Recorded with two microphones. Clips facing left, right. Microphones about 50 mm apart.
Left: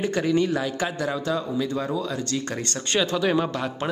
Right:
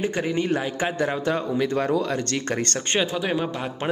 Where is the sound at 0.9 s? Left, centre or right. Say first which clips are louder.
Right 2 dB; right.